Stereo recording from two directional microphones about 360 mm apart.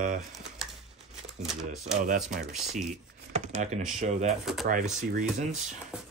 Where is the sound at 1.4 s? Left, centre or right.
Centre.